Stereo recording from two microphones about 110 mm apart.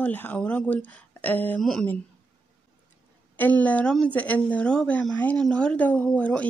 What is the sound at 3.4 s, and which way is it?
Speech, 15° left (ahead or behind).